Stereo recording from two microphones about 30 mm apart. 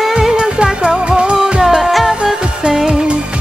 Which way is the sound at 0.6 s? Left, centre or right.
Right.